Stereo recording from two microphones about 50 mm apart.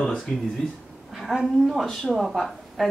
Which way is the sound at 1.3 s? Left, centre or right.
Centre.